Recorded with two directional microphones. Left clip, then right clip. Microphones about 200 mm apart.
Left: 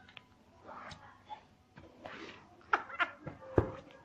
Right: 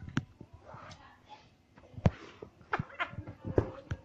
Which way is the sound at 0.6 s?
50° left (ahead or behind).